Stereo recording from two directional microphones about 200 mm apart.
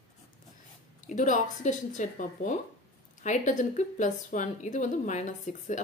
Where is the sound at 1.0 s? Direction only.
40° left (ahead or behind).